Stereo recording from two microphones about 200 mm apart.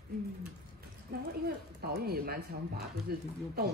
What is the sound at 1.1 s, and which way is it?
Speech, 50° right (ahead or behind).